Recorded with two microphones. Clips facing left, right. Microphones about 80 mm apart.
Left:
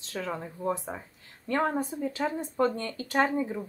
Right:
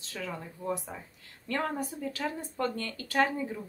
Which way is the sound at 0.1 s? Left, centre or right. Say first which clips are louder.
Left 4 dB; left.